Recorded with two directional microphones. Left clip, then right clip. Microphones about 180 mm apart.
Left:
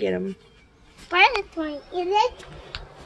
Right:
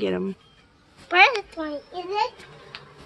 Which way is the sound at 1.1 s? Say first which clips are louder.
Right 1 dB; 30° right (ahead or behind).